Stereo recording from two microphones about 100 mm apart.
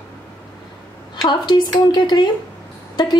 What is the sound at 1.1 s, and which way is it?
A woman's voice, 50° left (ahead or behind).